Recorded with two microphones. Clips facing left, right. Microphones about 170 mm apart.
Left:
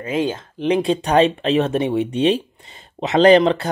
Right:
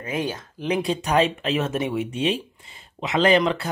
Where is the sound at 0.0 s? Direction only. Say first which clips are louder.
Left 6 dB; 25° left (ahead or behind).